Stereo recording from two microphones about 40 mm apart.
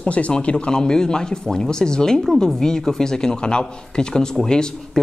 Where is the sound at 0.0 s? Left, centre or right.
Left.